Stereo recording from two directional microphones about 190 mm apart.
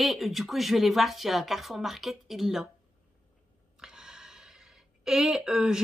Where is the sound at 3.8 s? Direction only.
5° right (ahead or behind).